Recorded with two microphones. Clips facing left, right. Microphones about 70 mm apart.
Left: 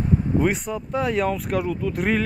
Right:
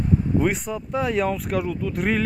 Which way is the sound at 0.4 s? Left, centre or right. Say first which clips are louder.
Left 1 dB; centre.